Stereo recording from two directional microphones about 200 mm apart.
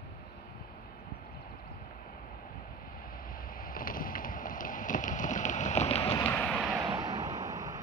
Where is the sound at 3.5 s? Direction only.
45° left (ahead or behind).